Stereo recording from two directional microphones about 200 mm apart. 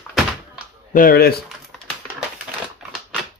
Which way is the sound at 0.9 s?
50° left (ahead or behind).